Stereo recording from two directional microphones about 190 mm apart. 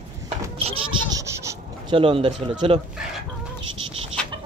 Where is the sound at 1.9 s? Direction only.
30° right (ahead or behind).